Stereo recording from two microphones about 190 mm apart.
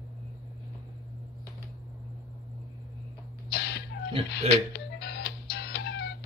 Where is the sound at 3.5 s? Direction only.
60° left (ahead or behind).